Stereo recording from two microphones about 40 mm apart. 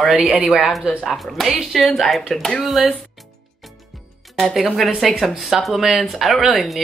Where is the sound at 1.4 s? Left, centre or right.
Centre.